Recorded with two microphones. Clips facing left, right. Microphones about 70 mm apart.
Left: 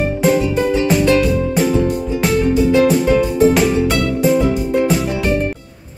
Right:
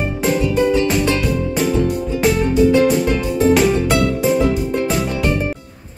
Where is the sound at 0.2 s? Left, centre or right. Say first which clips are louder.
Even; centre.